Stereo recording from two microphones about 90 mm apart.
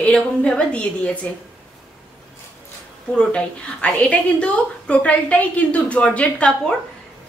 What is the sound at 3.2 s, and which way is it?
A woman's voice, 15° left (ahead or behind).